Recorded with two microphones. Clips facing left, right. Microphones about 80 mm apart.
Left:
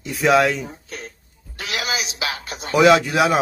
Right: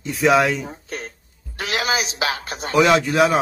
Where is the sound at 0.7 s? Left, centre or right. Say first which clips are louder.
Right 3 dB; right.